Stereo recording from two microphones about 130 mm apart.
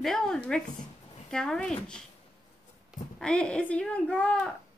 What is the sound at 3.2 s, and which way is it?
A woman's voice, 5° left (ahead or behind).